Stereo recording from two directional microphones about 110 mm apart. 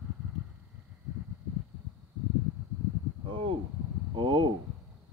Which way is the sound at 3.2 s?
50° right (ahead or behind).